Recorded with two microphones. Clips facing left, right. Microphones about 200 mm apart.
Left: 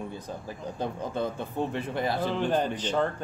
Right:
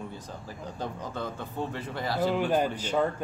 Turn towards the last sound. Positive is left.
turn(degrees=-10)  # may be behind; listen again after turning